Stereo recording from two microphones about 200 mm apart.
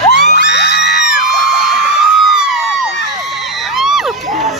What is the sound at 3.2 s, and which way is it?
Crowd, centre (ahead or behind).